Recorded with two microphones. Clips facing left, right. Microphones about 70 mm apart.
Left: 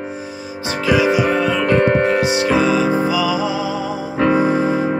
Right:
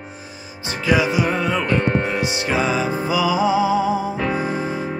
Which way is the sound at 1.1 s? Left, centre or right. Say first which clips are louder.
Left 4 dB; centre.